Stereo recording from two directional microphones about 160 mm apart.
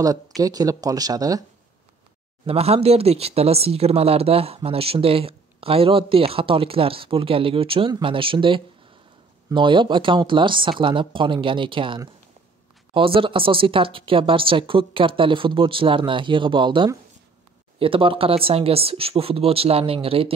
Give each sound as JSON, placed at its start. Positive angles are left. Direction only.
{"t": 0.4, "sound": "speech", "side_deg": -25}
{"t": 2.4, "sound": "speech", "side_deg": -40}